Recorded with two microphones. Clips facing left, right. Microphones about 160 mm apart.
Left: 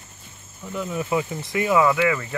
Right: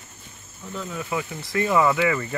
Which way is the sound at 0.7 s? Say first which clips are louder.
Left 5 dB; 15° left (ahead or behind).